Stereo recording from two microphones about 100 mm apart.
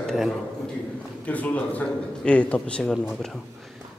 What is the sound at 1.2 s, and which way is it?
A man's voice, 15° left (ahead or behind).